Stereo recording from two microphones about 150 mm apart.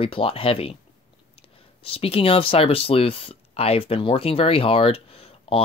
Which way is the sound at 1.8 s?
40° left (ahead or behind).